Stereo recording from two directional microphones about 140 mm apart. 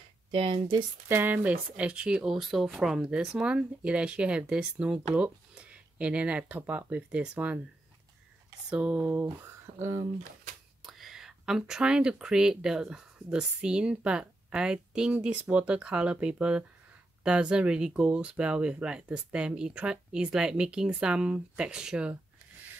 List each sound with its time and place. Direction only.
0.3 s speech: 35° right (ahead or behind)
1.0 s speech: 15° right (ahead or behind)
8.6 s speech: 10° right (ahead or behind)
10.8 s speech: centre (ahead or behind)